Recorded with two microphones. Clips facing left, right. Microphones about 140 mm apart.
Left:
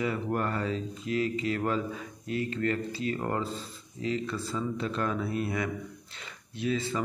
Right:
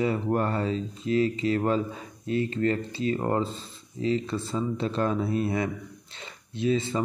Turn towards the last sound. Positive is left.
turn(degrees=-25)  # may be behind; listen again after turning